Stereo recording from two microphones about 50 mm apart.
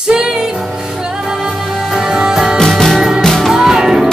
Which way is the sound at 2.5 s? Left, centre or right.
Centre.